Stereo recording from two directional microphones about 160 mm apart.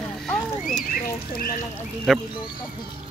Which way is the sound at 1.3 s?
65° left (ahead or behind).